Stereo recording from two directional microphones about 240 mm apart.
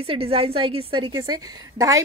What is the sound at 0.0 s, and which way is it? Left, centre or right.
A woman's voice, right.